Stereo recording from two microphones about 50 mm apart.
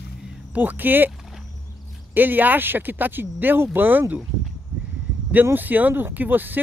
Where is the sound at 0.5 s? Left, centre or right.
Right.